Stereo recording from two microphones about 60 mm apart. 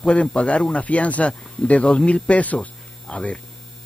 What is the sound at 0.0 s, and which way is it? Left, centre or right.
Speech, centre.